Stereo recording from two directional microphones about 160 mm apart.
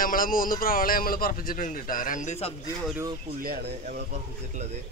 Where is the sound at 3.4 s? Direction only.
80° right.